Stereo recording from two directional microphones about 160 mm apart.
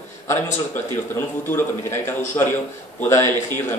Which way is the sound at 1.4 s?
15° left (ahead or behind).